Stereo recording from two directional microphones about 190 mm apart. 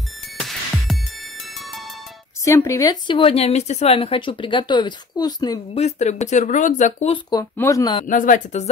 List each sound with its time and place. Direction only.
0.4 s music: centre (ahead or behind)
2.4 s a woman's voice: 15° left (ahead or behind)
5.8 s speech: 35° left (ahead or behind)
7.5 s speech: 15° left (ahead or behind)
8.0 s speech: 45° left (ahead or behind)